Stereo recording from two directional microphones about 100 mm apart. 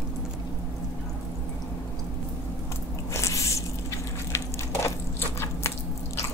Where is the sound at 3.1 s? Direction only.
30° left (ahead or behind).